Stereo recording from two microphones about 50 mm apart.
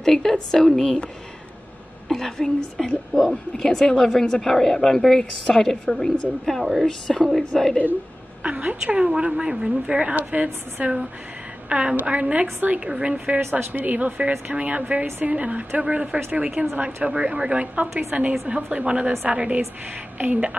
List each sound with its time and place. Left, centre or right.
0.0 s speech: centre
2.0 s speech: centre
6.6 s a woman's voice: centre
6.9 s speech: centre
8.4 s a woman's voice: right
10.1 s a woman's voice: right
12.8 s a woman's voice: centre
13.4 s a woman's voice: right